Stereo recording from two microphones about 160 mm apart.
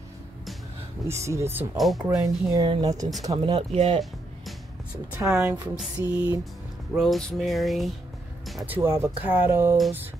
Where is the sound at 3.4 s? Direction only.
35° right (ahead or behind).